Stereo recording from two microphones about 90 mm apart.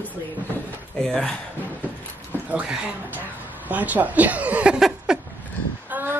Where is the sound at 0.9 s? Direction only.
5° left (ahead or behind).